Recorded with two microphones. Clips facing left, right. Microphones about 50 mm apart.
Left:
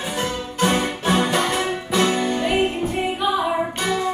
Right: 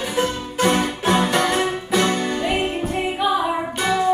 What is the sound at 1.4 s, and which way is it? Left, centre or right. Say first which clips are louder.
Music: right 2 dB; right.